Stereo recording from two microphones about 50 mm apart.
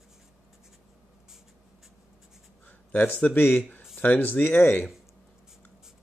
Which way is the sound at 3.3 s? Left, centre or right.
Left.